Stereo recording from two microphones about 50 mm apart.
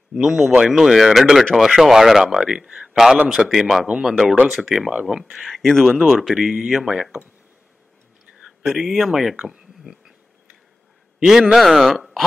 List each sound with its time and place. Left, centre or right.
0.1 s speech: centre
5.5 s speech: centre
8.4 s speech: centre
9.4 s speech: centre
11.1 s a man's voice: centre